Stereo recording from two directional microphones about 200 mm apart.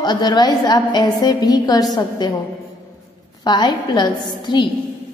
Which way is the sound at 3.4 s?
20° left (ahead or behind).